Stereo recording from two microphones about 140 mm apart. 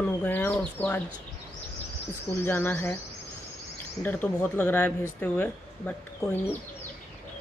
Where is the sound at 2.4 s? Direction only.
15° left (ahead or behind).